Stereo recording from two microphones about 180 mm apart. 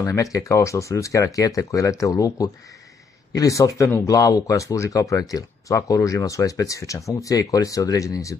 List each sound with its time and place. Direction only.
0.0 s speech: 20° left (ahead or behind)